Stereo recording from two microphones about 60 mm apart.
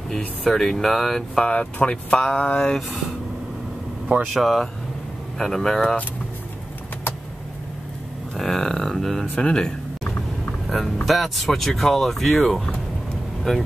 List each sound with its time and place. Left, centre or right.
0.4 s speech: centre
1.5 s speech: centre
4.3 s speech: centre
8.4 s speech: centre
11.1 s speech: centre